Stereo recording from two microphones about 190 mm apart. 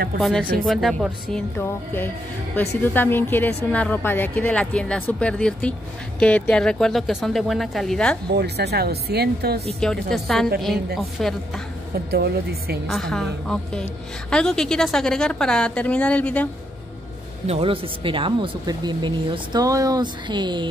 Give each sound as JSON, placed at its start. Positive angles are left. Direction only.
{"t": 0.2, "sound": "a woman's voice", "side_deg": 0}
{"t": 2.8, "sound": "a woman's voice", "side_deg": 10}
{"t": 8.3, "sound": "speech", "side_deg": -60}
{"t": 9.8, "sound": "a woman's voice", "side_deg": 5}
{"t": 12.1, "sound": "speech", "side_deg": -55}
{"t": 12.8, "sound": "a woman's voice", "side_deg": 5}
{"t": 17.5, "sound": "speech", "side_deg": -30}